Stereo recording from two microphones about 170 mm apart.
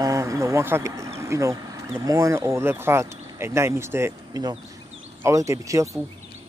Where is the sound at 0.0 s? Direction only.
20° right (ahead or behind).